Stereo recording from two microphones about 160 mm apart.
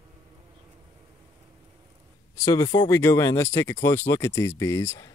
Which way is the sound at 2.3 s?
20° left (ahead or behind).